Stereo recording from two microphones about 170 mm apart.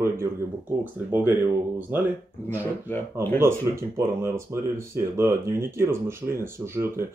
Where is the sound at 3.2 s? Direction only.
15° right (ahead or behind).